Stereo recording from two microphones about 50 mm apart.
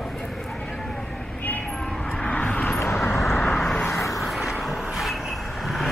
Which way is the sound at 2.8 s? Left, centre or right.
Left.